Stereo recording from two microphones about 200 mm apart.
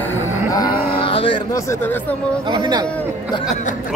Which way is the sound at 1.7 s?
10° left (ahead or behind).